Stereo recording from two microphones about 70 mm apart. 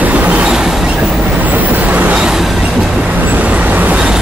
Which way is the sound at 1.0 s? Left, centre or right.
Right.